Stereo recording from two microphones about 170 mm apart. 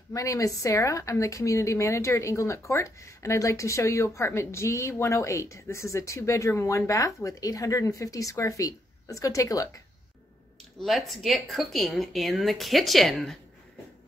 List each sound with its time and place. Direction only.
0.1 s a woman's voice: 20° left (ahead or behind)
10.8 s speech: centre (ahead or behind)